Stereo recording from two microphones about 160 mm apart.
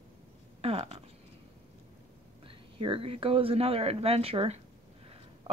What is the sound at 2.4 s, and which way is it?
Speech, 35° right (ahead or behind).